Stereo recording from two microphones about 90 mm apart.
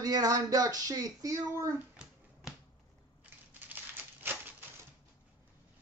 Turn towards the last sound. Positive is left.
turn(degrees=-20)  # may be behind; listen again after turning